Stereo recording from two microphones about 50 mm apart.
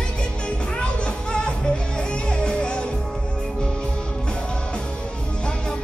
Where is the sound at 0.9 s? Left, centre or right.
Centre.